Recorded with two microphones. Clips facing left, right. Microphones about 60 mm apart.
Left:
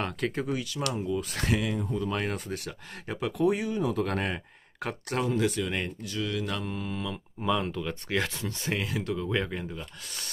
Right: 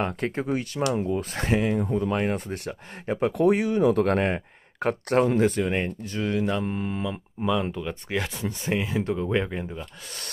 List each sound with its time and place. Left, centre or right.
0.0 s speech: right
1.3 s speech: right
3.3 s speech: right
4.1 s speech: right
7.6 s speech: centre